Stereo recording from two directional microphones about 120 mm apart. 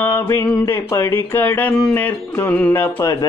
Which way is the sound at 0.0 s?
15° left (ahead or behind).